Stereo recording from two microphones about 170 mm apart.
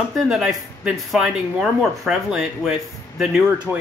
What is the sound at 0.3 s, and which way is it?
Speech, 5° right (ahead or behind).